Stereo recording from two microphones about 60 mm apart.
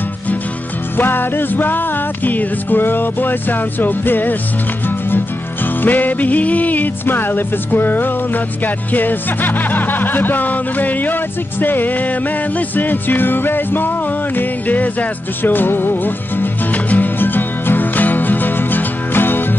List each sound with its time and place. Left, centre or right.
0.9 s music: left